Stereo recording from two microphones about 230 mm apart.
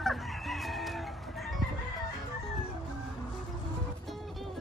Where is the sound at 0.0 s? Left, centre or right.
Centre.